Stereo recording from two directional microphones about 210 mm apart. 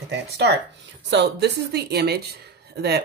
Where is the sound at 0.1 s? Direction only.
55° right (ahead or behind).